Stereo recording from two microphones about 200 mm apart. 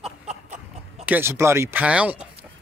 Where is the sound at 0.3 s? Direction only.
35° right (ahead or behind).